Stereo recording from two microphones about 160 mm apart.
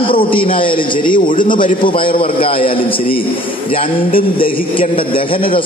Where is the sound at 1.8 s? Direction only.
30° left (ahead or behind).